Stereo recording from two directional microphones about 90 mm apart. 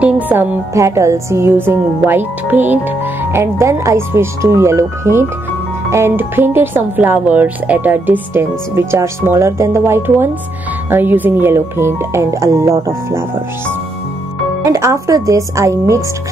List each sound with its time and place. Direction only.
0.0 s music: 20° right (ahead or behind)
0.7 s speech: 35° right (ahead or behind)
14.6 s speech: 35° right (ahead or behind)